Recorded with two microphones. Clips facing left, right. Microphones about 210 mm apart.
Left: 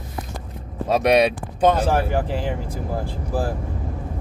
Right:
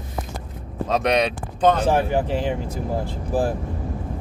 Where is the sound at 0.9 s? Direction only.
10° left (ahead or behind).